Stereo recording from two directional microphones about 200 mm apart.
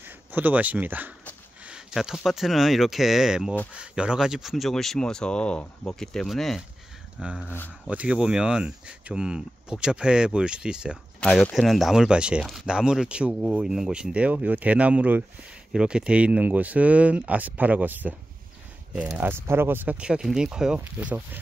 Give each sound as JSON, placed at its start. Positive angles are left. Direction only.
{"t": 0.0, "sound": "speech", "side_deg": -10}
{"t": 7.4, "sound": "speech", "side_deg": 10}
{"t": 7.8, "sound": "speech", "side_deg": -5}